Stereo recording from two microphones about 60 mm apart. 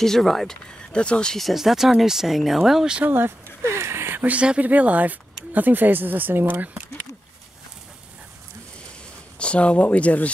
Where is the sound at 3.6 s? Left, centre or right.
Right.